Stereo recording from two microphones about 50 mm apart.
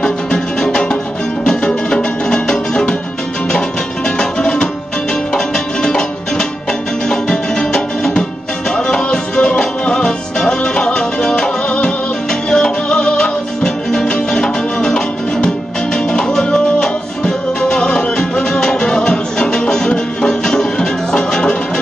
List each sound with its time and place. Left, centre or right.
0.0 s music: centre
4.2 s music: centre